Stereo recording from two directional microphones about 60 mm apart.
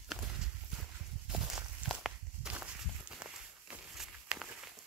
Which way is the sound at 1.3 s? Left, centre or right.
Centre.